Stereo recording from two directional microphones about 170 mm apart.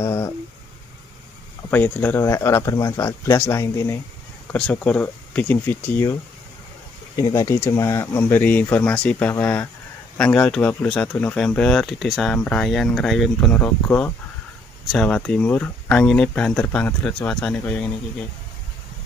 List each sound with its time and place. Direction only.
0.0 s a sound: 15° left (ahead or behind)
1.7 s speech: 10° left (ahead or behind)
7.2 s speech: 15° left (ahead or behind)